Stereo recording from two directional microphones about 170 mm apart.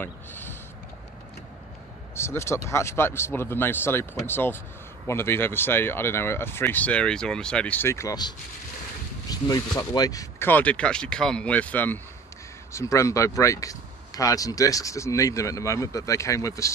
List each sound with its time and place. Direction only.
0.0 s speech: 10° left (ahead or behind)
2.1 s speech: 15° left (ahead or behind)